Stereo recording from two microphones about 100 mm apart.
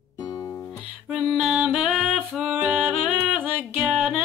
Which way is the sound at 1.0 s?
5° right (ahead or behind).